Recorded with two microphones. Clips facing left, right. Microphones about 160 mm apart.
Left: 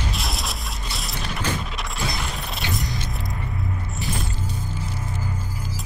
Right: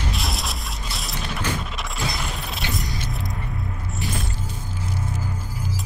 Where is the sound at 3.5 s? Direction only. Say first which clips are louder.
Left 1 dB; centre (ahead or behind).